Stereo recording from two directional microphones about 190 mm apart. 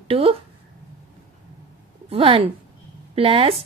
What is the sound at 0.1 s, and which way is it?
Speech, 30° right (ahead or behind).